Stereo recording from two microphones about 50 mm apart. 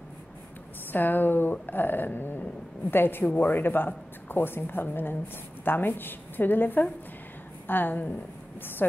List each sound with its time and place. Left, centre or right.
0.9 s speech: left